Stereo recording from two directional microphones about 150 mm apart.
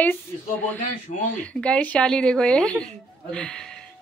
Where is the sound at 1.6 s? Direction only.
10° left (ahead or behind).